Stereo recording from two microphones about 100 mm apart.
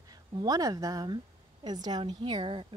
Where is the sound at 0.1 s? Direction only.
40° right (ahead or behind).